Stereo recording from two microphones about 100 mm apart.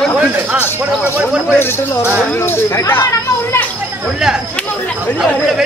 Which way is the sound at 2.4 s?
25° left (ahead or behind).